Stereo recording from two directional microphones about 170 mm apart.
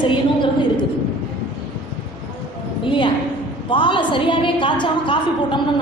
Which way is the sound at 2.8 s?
30° left (ahead or behind).